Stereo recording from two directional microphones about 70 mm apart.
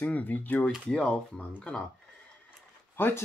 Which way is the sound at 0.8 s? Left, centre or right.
Centre.